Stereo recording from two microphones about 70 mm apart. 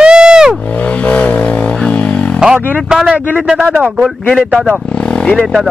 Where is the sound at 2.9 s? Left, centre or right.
Centre.